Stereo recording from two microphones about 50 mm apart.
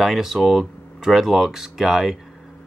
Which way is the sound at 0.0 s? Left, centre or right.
Centre.